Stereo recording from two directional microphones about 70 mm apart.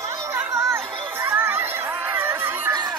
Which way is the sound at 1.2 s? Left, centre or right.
Right.